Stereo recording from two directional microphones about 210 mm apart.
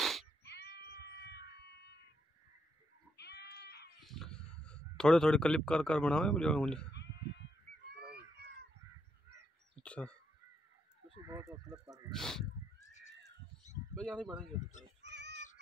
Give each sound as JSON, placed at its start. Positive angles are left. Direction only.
{"t": 0.0, "sound": "cat", "side_deg": 0}
{"t": 0.4, "sound": "cat", "side_deg": 50}
{"t": 3.2, "sound": "goat", "side_deg": 50}
{"t": 4.0, "sound": "a man's voice", "side_deg": 0}
{"t": 7.9, "sound": "a sound", "side_deg": -50}
{"t": 9.8, "sound": "goose", "side_deg": 5}
{"t": 11.2, "sound": "speech", "side_deg": -15}
{"t": 12.1, "sound": "speech", "side_deg": 0}
{"t": 13.9, "sound": "speech", "side_deg": -5}
{"t": 15.0, "sound": "music", "side_deg": -55}